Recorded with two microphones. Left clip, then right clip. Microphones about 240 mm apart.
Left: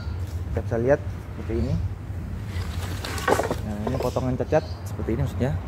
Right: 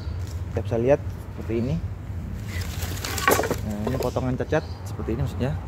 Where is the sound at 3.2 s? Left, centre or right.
Right.